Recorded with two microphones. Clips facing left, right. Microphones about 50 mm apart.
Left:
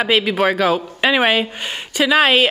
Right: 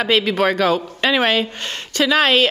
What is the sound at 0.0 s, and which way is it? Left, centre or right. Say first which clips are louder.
Speech: left 1 dB; centre.